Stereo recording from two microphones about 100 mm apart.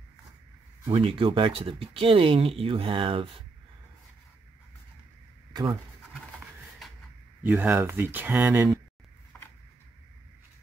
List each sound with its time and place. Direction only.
0.9 s speech: 65° right (ahead or behind)
5.5 s speech: 45° right (ahead or behind)
7.4 s speech: 15° right (ahead or behind)
9.3 s a sound: 15° left (ahead or behind)